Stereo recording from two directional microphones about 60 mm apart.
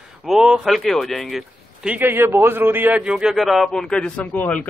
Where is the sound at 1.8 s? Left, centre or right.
Right.